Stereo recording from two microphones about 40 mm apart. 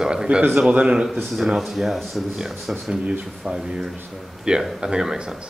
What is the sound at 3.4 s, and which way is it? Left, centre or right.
A man's voice, right.